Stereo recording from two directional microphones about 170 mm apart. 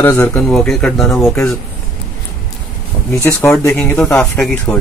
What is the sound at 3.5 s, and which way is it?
Speech, 5° left (ahead or behind).